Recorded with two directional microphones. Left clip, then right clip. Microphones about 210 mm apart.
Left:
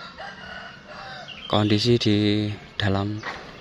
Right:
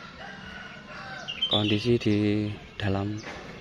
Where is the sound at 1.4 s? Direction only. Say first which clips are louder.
Left 4 dB; 15° left (ahead or behind).